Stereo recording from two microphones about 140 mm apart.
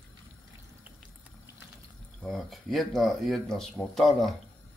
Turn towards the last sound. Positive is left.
turn(degrees=0)  # may be behind; listen again after turning